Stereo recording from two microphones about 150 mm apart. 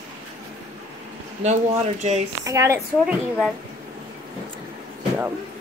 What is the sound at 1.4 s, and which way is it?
Speech, 50° right (ahead or behind).